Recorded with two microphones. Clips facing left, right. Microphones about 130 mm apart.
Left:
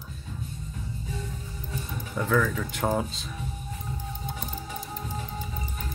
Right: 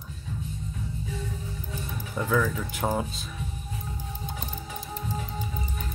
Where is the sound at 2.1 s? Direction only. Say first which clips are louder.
Left 1 dB; 5° right (ahead or behind).